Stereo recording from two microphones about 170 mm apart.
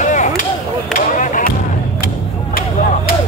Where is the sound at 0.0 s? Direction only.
45° left (ahead or behind).